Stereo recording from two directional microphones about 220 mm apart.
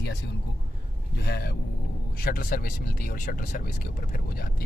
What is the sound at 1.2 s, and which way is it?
Speech, 45° left (ahead or behind).